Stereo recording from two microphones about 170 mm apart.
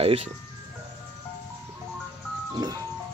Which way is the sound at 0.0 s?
35° right (ahead or behind).